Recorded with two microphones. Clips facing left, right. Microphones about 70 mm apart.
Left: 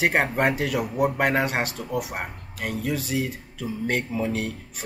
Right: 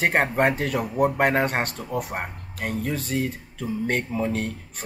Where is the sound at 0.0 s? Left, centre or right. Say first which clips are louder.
Right 1 dB; centre.